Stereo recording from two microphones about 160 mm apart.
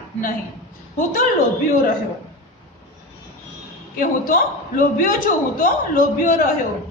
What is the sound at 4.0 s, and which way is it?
A woman's voice, 60° left (ahead or behind).